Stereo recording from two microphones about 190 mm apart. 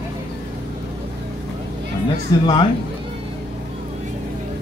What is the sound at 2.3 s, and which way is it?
Speech, 20° left (ahead or behind).